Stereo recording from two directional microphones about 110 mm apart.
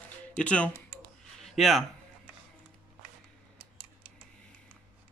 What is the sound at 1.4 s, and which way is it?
Speech, centre (ahead or behind).